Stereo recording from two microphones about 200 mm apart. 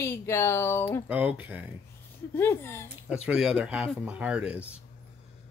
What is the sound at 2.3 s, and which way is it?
Speech, 10° left (ahead or behind).